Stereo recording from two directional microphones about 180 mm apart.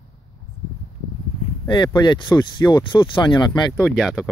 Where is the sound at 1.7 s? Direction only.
25° left (ahead or behind).